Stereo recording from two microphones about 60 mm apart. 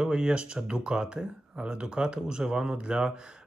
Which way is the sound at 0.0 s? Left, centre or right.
Centre.